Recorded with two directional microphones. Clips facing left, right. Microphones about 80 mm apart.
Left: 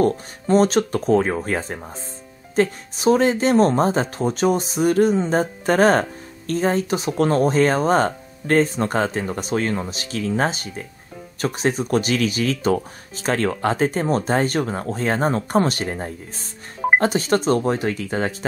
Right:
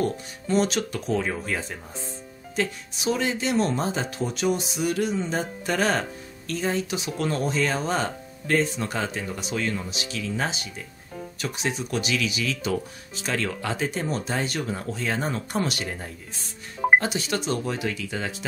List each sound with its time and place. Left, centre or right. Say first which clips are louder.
0.0 s speech: left 7 dB; left